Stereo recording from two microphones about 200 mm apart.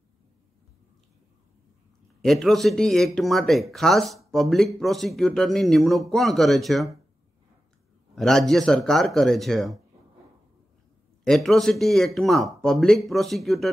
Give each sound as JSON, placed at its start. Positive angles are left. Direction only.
{"t": 2.2, "sound": "speech", "side_deg": 0}
{"t": 8.2, "sound": "speech", "side_deg": 0}
{"t": 11.2, "sound": "speech", "side_deg": 0}